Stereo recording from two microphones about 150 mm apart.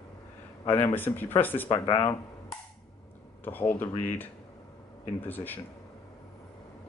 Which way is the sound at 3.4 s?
10° left (ahead or behind).